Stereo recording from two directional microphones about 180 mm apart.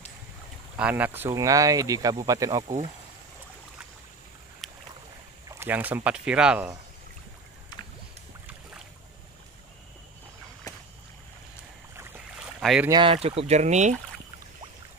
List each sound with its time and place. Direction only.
0.7 s speech: 10° right (ahead or behind)
4.6 s boat: centre (ahead or behind)
5.5 s speech: 10° right (ahead or behind)
7.7 s boat: 25° left (ahead or behind)
10.7 s boat: 20° left (ahead or behind)
12.5 s boat: centre (ahead or behind)
12.9 s speech: 30° right (ahead or behind)